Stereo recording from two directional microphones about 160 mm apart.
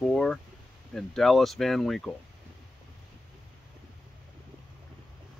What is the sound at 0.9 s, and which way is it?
Speech, centre (ahead or behind).